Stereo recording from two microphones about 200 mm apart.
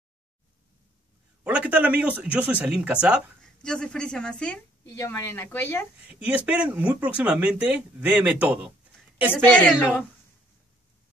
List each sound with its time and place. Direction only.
1.4 s speech: 5° right (ahead or behind); by 5.9 s 10° left (ahead or behind)
6.0 s speech: 5° right (ahead or behind)
9.3 s a woman's voice: 5° left (ahead or behind)